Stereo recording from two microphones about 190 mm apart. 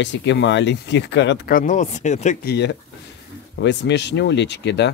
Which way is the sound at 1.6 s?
40° left (ahead or behind).